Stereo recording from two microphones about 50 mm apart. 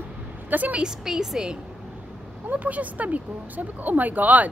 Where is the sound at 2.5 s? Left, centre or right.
Right.